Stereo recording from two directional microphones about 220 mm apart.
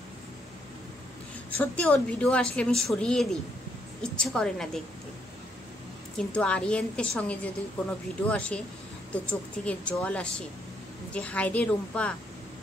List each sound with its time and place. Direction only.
1.6 s a woman's voice: 5° left (ahead or behind)
6.1 s a woman's voice: 5° left (ahead or behind)